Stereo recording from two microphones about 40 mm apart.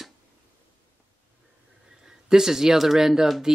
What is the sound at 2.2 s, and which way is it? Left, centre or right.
Speech, centre.